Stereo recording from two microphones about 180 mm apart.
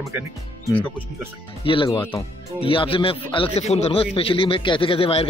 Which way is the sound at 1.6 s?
30° left (ahead or behind).